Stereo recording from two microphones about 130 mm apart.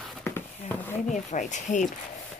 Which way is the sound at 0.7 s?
15° left (ahead or behind).